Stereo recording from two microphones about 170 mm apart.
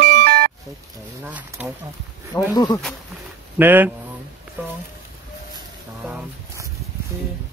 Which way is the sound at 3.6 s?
10° right (ahead or behind).